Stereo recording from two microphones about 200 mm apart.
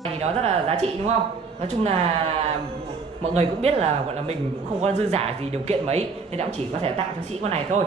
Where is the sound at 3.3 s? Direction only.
30° right (ahead or behind).